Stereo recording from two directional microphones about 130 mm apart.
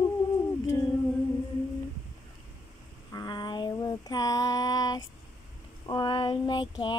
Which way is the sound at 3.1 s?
30° left (ahead or behind).